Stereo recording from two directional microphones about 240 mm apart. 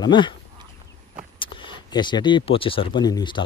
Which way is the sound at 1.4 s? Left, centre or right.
Centre.